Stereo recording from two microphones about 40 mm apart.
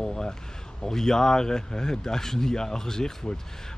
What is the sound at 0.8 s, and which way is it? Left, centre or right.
Speech, centre.